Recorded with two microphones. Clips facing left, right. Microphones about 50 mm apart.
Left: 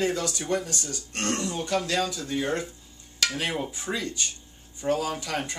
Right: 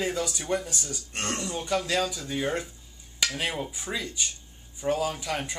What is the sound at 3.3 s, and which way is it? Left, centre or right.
Speech, centre.